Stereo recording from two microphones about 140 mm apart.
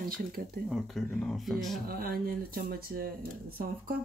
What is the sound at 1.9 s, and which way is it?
Speech, 90° right.